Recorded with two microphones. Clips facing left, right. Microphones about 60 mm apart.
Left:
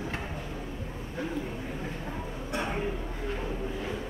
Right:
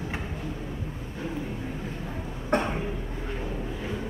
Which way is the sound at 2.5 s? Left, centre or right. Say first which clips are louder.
Right 8 dB; right.